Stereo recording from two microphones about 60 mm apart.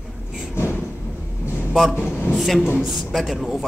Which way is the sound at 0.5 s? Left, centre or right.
Left.